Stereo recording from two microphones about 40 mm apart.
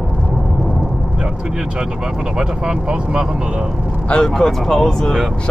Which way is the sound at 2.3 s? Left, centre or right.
Centre.